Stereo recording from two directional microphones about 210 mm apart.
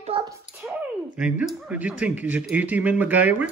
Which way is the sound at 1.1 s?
5° right (ahead or behind).